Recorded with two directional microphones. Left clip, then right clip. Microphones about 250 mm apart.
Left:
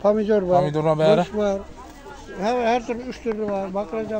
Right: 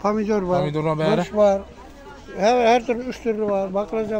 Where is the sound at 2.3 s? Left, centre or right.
Right.